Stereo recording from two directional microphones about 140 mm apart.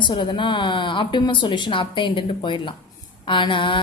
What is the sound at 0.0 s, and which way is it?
A woman's voice, 35° left (ahead or behind).